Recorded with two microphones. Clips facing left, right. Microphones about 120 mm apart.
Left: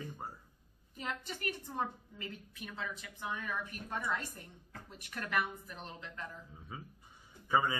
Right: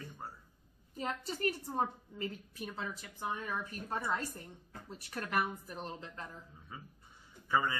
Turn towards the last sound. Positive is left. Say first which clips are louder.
# left 1 dB
turn(degrees=15)  # may be behind; listen again after turning